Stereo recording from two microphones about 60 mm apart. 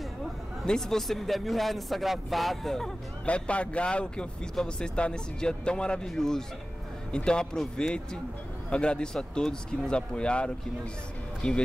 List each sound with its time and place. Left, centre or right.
0.7 s speech: centre
3.3 s speech: left